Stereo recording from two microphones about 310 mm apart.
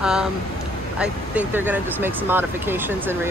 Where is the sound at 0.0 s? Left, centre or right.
Centre.